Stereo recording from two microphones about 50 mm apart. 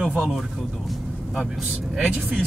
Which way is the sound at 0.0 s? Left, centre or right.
Centre.